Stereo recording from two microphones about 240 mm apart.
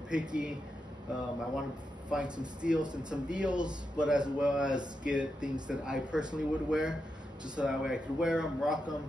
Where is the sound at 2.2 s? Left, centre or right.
Centre.